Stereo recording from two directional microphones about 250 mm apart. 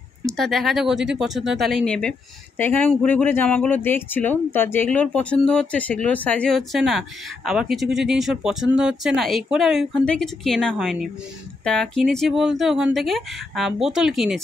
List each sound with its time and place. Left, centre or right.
0.3 s speech: centre